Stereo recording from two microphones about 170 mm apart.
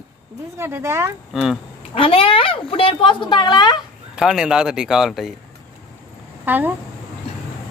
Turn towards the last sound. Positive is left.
turn(degrees=-10)  # may be behind; listen again after turning